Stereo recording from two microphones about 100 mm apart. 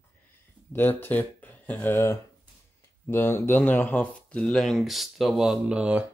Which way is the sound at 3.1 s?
20° left (ahead or behind).